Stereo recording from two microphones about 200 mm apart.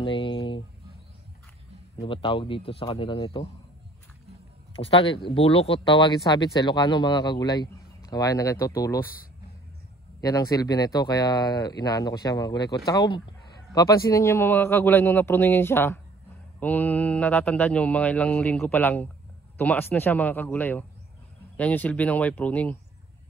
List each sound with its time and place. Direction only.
0.0 s music: 25° left (ahead or behind)
2.0 s speech: 25° left (ahead or behind)
4.7 s speech: 25° left (ahead or behind)
10.2 s speech: 15° left (ahead or behind)